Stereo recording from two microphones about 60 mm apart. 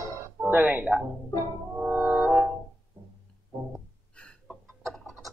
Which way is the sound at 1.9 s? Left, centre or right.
Right.